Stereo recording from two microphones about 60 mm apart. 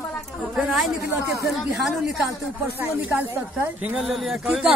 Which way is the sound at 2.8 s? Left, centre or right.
Right.